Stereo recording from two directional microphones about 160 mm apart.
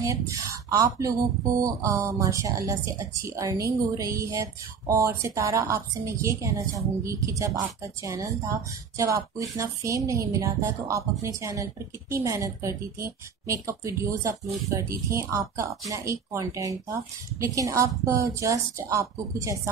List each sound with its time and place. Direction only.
0.3 s speech: 20° right (ahead or behind)